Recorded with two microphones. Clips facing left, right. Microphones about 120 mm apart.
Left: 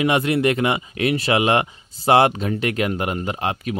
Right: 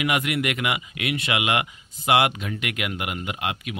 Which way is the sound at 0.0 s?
30° left (ahead or behind).